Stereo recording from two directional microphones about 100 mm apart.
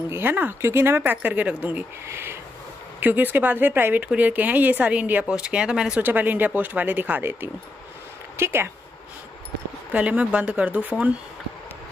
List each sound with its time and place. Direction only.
0.1 s speech: 20° right (ahead or behind)
9.9 s speech: 15° right (ahead or behind)